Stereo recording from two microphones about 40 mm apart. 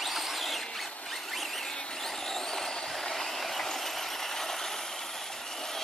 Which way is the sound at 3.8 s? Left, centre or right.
Centre.